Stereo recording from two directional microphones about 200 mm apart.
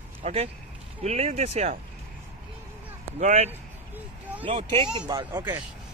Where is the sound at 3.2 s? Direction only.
35° right (ahead or behind); by 5.4 s 20° right (ahead or behind).